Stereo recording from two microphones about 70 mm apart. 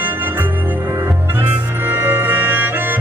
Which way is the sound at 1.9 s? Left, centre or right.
Right.